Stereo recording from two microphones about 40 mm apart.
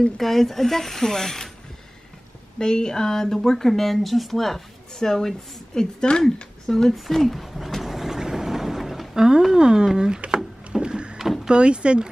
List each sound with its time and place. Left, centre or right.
0.2 s speech: centre
2.6 s speech: centre
6.9 s a sound: centre
9.1 s speech: centre
10.3 s wood: centre
11.4 s speech: right